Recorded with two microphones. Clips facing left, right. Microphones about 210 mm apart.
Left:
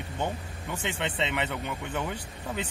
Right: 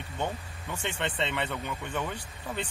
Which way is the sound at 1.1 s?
15° left (ahead or behind).